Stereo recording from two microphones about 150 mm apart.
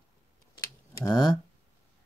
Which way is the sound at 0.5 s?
25° left (ahead or behind).